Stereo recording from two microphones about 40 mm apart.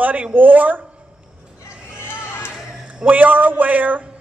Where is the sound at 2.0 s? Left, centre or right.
Left.